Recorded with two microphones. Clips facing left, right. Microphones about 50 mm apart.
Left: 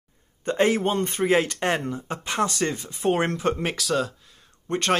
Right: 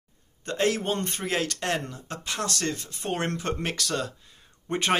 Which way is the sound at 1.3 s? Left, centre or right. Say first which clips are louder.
Left 5 dB; left.